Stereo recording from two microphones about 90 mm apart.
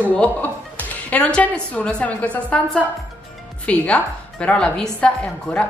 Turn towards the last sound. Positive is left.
turn(degrees=10)  # may be behind; listen again after turning